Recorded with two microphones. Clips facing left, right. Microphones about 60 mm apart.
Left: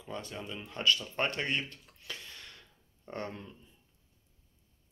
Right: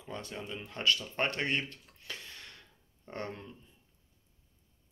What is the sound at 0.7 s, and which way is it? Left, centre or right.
Speech, right.